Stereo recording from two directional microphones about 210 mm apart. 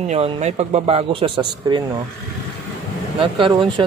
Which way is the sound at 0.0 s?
30° right (ahead or behind).